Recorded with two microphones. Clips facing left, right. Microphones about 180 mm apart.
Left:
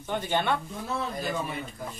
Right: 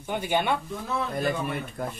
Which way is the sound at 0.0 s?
10° right (ahead or behind).